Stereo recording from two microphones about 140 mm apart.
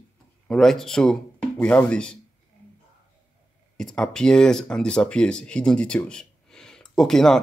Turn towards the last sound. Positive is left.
turn(degrees=5)  # may be behind; listen again after turning